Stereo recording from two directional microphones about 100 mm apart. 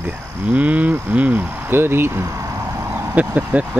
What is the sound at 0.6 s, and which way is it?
Speech, 15° right (ahead or behind).